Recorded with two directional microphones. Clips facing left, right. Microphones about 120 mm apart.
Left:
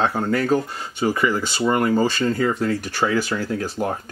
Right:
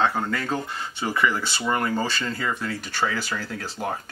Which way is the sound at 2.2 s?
45° left (ahead or behind).